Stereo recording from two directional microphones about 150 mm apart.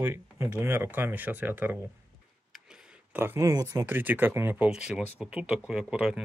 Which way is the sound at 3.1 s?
15° right (ahead or behind).